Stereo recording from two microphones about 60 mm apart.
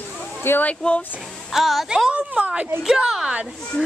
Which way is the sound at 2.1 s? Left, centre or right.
Right.